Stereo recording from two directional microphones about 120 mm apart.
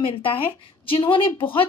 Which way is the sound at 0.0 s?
50° left (ahead or behind).